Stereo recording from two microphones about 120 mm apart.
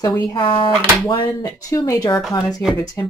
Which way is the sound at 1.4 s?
30° left (ahead or behind).